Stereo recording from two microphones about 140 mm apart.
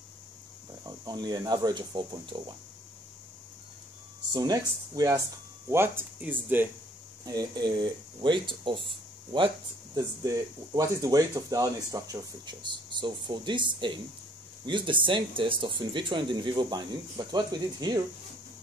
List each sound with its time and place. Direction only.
0.8 s speech: 30° right (ahead or behind)
4.3 s speech: 30° right (ahead or behind)
7.2 s speech: 30° right (ahead or behind)
9.9 s speech: 25° right (ahead or behind)